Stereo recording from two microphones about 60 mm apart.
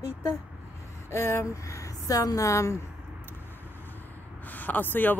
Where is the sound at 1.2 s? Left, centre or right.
Left.